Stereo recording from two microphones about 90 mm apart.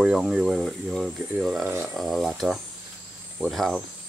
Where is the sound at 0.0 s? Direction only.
10° right (ahead or behind).